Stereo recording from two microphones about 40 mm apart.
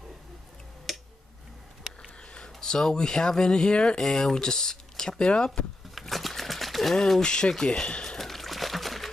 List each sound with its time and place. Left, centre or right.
0.9 s tick-tock: centre
2.3 s speech: centre
5.9 s a sound: centre
7.2 s speech: left
7.5 s speech: centre
7.8 s speech: left
8.2 s a sound: centre